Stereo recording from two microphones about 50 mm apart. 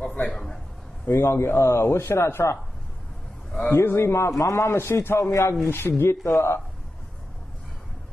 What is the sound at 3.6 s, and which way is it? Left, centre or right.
A man's voice, left.